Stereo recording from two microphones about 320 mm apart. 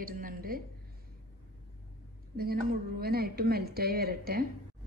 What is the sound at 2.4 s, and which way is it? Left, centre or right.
Speech, right.